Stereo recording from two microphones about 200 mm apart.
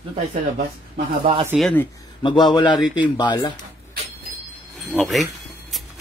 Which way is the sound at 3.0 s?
20° left (ahead or behind).